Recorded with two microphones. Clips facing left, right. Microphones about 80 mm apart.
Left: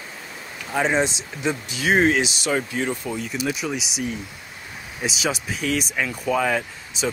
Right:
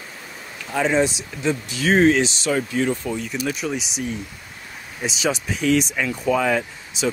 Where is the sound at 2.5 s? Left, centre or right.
Left.